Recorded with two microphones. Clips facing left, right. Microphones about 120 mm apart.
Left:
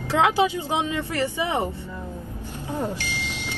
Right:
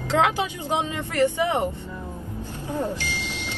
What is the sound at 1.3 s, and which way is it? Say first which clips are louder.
Speech: right 2 dB; 15° left (ahead or behind).